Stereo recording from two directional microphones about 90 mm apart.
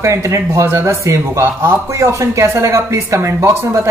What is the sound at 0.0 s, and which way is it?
Speech, 30° right (ahead or behind).